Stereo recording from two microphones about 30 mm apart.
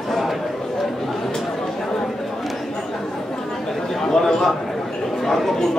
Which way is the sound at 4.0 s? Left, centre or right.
Centre.